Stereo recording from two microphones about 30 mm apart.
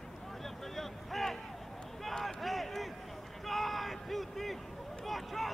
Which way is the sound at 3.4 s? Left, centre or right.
Centre.